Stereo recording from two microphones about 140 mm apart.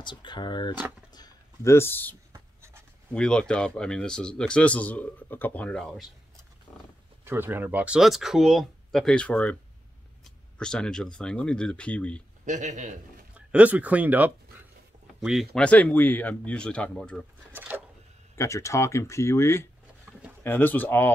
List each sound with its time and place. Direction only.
0.0 s speech: 35° left (ahead or behind); by 2.1 s 15° left (ahead or behind)
2.3 s writing: 20° right (ahead or behind)
3.1 s speech: 5° left (ahead or behind)
6.7 s wild animals: centre (ahead or behind)
7.2 s speech: 15° right (ahead or behind); by 12.2 s 10° left (ahead or behind)
12.4 s a man's voice: 60° right (ahead or behind)
13.5 s speech: 10° right (ahead or behind)
15.6 s speech: 10° left (ahead or behind)
17.6 s a sound: 10° right (ahead or behind)
18.3 s speech: 20° left (ahead or behind)